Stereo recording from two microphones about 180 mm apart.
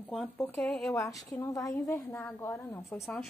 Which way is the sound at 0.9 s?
15° left (ahead or behind).